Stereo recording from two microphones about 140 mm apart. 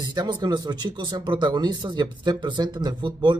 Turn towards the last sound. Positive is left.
turn(degrees=-30)  # may be behind; listen again after turning